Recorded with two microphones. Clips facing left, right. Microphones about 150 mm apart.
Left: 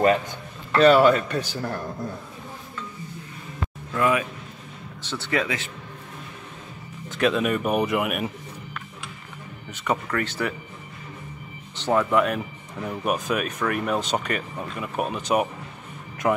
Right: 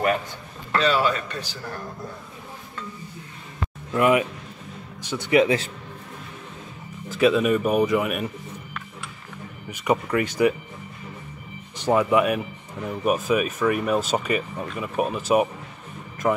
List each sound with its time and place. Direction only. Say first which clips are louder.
0.7 s a man's voice: left 6 dB; 55° left (ahead or behind)
3.9 s speech: right 4 dB; 20° right (ahead or behind)
7.1 s speech: right 3 dB; 5° right (ahead or behind)
9.7 s speech: right 3 dB; 10° right (ahead or behind)
11.7 s speech: right 2 dB; 10° right (ahead or behind)